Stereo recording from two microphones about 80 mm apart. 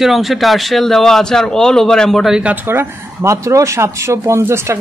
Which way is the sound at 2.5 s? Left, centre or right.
Right.